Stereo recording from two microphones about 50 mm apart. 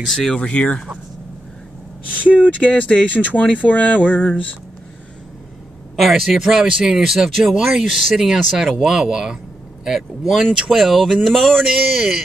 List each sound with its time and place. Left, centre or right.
0.0 s speech: centre
0.3 s speech: left
2.4 s speech: left
5.9 s speech: centre